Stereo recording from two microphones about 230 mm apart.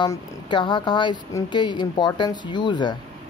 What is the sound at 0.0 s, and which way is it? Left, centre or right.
Speech, centre.